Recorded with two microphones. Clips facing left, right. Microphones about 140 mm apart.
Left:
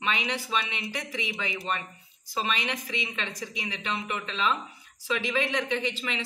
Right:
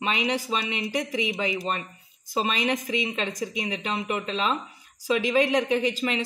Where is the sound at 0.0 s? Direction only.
35° right (ahead or behind).